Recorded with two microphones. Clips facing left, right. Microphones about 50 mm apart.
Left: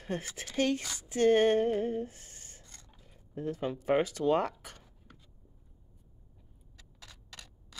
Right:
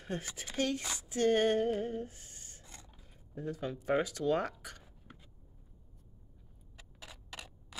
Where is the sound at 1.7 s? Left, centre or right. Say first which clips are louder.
Left 4 dB; left.